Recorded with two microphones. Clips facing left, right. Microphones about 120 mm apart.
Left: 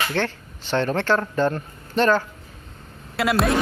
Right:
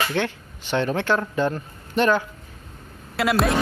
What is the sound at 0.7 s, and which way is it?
Speech, 15° right (ahead or behind).